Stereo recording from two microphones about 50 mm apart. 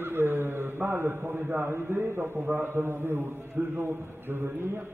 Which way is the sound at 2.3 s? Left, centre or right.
Right.